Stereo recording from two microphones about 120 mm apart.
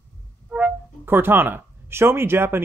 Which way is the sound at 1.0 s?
20° right (ahead or behind).